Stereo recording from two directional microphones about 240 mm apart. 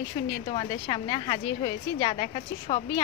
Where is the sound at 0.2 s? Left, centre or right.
Left.